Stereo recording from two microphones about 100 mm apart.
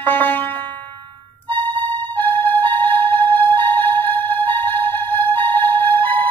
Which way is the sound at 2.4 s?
20° left (ahead or behind).